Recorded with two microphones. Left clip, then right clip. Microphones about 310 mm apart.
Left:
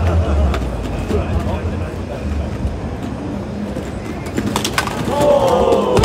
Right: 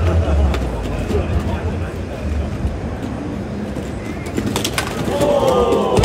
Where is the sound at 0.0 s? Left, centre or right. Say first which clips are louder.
Left 1 dB; centre.